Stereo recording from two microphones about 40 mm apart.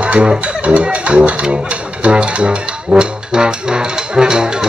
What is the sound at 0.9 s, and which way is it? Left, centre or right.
Speech, right.